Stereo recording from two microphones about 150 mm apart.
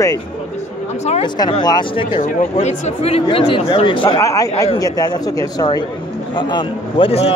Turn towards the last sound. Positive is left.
turn(degrees=40)  # may be behind; listen again after turning